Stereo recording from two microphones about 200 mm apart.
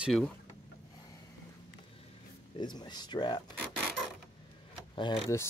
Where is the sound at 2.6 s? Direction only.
20° left (ahead or behind).